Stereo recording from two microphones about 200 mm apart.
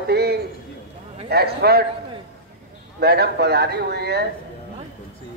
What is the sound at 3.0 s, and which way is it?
A man's voice, 55° right (ahead or behind).